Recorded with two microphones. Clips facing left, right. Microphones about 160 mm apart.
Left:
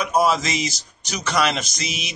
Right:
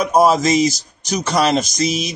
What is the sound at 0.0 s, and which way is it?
Speech, 40° right (ahead or behind).